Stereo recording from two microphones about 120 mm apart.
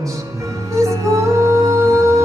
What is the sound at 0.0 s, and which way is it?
Music, 25° right (ahead or behind).